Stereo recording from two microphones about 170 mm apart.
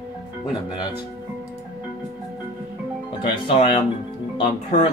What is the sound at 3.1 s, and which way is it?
Speech, 30° left (ahead or behind).